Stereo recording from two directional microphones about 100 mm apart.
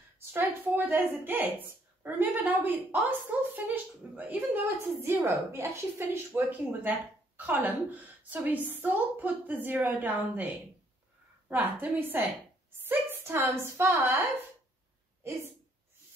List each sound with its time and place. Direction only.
0.3 s a woman's voice: 20° right (ahead or behind)